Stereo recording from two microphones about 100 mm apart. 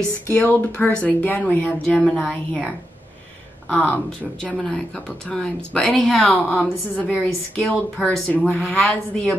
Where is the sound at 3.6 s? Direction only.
15° left (ahead or behind).